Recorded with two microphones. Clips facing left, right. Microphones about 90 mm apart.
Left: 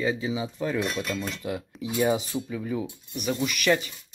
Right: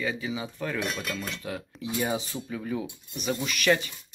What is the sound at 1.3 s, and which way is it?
Speech, 10° left (ahead or behind).